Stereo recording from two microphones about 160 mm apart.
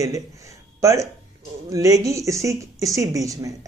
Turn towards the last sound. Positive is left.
turn(degrees=-20)  # may be behind; listen again after turning